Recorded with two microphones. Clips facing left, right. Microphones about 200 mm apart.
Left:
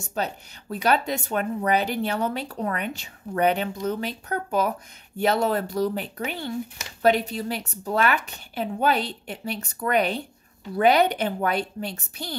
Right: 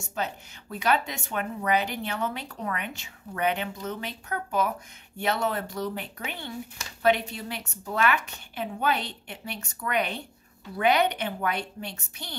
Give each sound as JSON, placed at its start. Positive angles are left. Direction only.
{"t": 0.1, "sound": "speech", "side_deg": 35}